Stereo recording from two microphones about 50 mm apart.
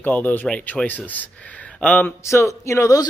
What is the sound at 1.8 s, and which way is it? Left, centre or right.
Speech, left.